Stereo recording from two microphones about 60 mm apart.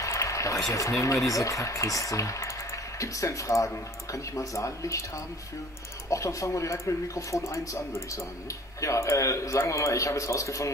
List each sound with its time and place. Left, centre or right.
0.0 s speech: left
6.0 s speech: left